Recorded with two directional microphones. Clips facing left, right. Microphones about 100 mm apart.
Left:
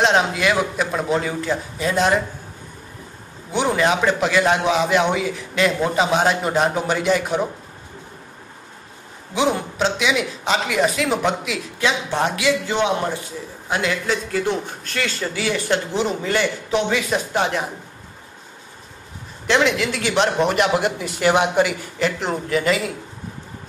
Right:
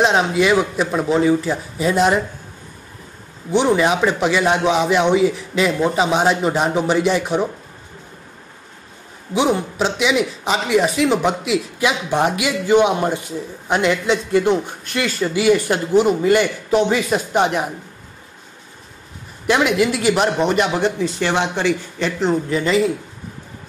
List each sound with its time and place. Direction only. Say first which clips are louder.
0.0 s a man's voice: right 2 dB; centre (ahead or behind)
3.7 s a man's voice: right 2 dB; 5° right (ahead or behind)
9.3 s a man's voice: right 3 dB; centre (ahead or behind); by 17.6 s 20° right (ahead or behind)
19.4 s a man's voice: right 2 dB; 10° right (ahead or behind); by 22.8 s 5° left (ahead or behind)